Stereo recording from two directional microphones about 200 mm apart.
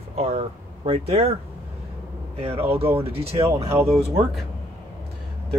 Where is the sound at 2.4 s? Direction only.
30° right (ahead or behind).